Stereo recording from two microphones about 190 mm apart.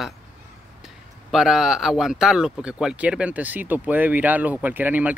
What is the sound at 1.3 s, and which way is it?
Speech, centre (ahead or behind).